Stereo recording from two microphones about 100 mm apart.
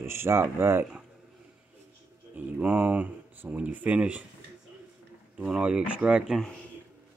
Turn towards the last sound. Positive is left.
turn(degrees=-10)  # may be behind; listen again after turning